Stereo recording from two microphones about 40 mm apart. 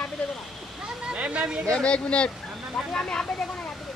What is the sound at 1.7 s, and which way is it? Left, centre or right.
Speech, left.